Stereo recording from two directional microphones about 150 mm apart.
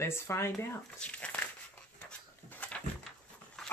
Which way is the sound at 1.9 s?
10° left (ahead or behind).